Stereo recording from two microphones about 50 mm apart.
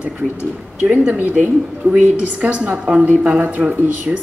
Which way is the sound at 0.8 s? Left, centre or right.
Right.